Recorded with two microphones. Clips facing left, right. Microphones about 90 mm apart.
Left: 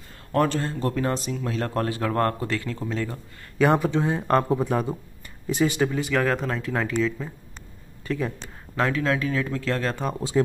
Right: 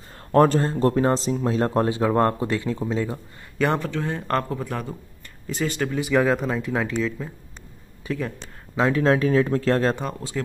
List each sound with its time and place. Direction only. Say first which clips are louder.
0.3 s speech: right 6 dB; 35° right (ahead or behind); by 2.9 s 20° right (ahead or behind)
3.5 s speech: left 3 dB; 5° left (ahead or behind)
5.9 s speech: right 3 dB; 10° right (ahead or behind)
8.9 s speech: right 6 dB; 35° right (ahead or behind)
10.3 s speech: left 7 dB; 25° left (ahead or behind)